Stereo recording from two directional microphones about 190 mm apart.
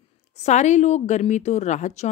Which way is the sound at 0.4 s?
40° left (ahead or behind).